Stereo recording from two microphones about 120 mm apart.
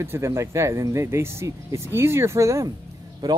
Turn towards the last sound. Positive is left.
turn(degrees=-30)  # may be behind; listen again after turning